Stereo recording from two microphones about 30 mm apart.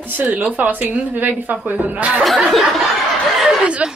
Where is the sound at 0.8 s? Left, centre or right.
Right.